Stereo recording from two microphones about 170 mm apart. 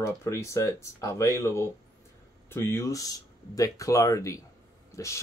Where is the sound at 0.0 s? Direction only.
15° left (ahead or behind).